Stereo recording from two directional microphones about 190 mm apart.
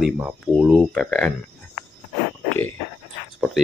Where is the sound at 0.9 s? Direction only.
5° left (ahead or behind).